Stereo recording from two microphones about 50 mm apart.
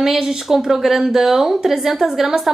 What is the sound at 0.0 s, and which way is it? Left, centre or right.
A woman's voice, centre.